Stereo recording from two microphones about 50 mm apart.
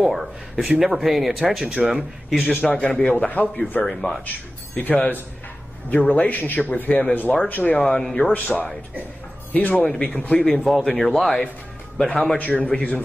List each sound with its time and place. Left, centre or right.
0.0 s speech: centre
2.4 s speech: left
3.3 s a man's voice: left
3.8 s speech: centre
4.7 s a man's voice: left
8.0 s speech: centre
8.3 s a man's voice: left
10.7 s speech: centre
12.0 s speech: centre
12.4 s a man's voice: left